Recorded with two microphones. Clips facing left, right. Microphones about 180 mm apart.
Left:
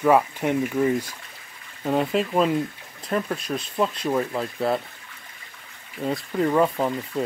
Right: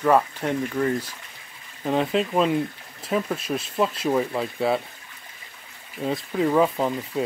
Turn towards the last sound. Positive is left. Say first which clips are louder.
# even
turn(degrees=-5)  # may be behind; listen again after turning